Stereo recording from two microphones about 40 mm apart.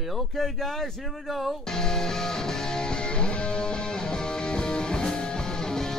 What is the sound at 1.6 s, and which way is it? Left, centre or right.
Music, centre.